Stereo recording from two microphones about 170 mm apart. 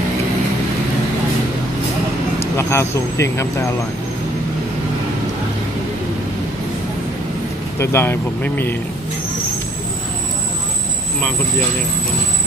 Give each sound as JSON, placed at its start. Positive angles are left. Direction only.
{"t": 2.5, "sound": "speech", "side_deg": 15}
{"t": 7.8, "sound": "speech", "side_deg": 15}